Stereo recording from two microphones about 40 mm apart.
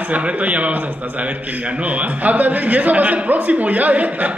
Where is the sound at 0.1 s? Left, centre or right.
Right.